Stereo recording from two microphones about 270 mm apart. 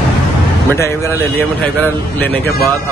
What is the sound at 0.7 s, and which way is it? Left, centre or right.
Speech, centre.